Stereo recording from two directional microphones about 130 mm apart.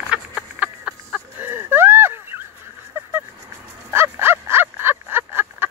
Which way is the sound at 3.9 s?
20° right (ahead or behind).